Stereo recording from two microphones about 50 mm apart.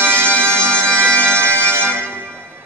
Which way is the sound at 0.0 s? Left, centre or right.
Right.